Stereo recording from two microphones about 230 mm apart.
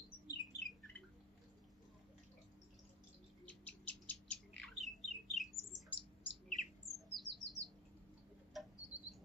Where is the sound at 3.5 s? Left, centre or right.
Centre.